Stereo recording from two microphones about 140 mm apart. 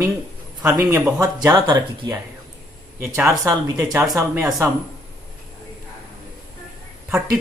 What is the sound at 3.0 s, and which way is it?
Speech, 15° right (ahead or behind).